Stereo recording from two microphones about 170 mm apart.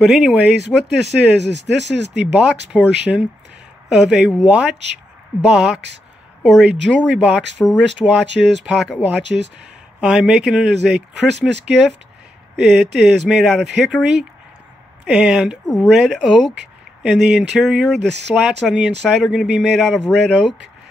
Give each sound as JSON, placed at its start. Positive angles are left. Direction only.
{"t": 0.0, "sound": "speech", "side_deg": -5}
{"t": 1.0, "sound": "speech", "side_deg": -90}
{"t": 2.3, "sound": "speech", "side_deg": -5}
{"t": 15.0, "sound": "speech", "side_deg": -5}